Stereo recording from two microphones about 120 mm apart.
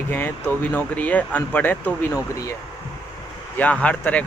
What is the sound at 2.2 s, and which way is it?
Speech, 25° left (ahead or behind).